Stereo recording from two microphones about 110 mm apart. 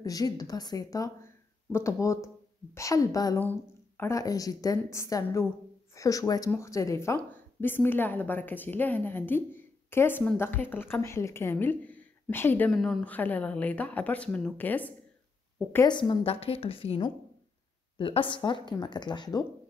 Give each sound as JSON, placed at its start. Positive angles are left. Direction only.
{"t": 0.0, "sound": "a woman's voice", "side_deg": 35}
{"t": 3.3, "sound": "speech", "side_deg": 20}
{"t": 4.2, "sound": "a woman's voice", "side_deg": 35}
{"t": 15.9, "sound": "speech", "side_deg": 45}
{"t": 16.3, "sound": "a woman's voice", "side_deg": 65}